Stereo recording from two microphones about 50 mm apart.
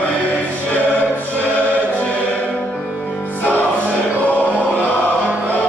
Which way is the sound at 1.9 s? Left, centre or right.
Left.